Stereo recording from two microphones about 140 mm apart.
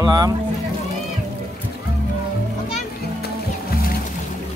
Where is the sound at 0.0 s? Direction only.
30° right (ahead or behind).